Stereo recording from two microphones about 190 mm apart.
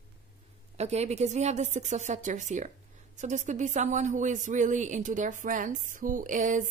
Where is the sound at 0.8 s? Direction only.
35° right (ahead or behind).